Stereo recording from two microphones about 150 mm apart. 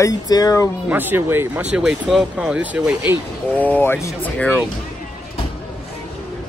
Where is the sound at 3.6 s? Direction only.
10° left (ahead or behind).